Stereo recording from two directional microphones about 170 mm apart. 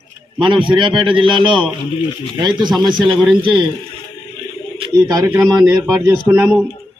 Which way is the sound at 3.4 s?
30° right (ahead or behind).